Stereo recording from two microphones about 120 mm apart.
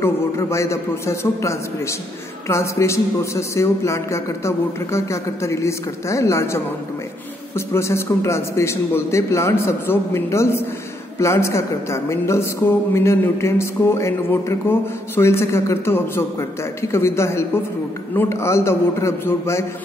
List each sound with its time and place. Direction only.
0.0 s a woman's voice: 25° left (ahead or behind)